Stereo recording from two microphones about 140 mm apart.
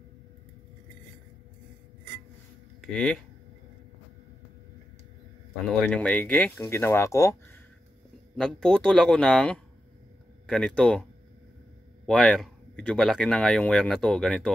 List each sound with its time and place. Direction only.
2.8 s speech: 5° left (ahead or behind)
5.9 s speech: 10° left (ahead or behind)
8.4 s speech: 5° left (ahead or behind)
12.1 s speech: centre (ahead or behind)